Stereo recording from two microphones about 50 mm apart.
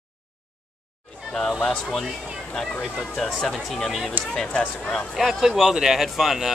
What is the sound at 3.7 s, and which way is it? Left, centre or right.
Speech, centre.